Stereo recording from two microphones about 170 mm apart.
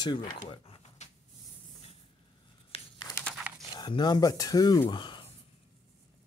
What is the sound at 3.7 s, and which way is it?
Speech, 25° left (ahead or behind).